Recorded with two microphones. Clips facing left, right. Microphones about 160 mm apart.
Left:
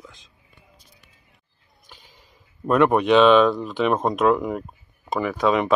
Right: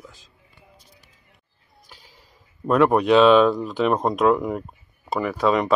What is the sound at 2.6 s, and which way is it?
Speech, centre (ahead or behind).